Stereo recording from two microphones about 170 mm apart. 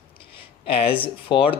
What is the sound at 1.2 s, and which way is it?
Speech, 30° left (ahead or behind).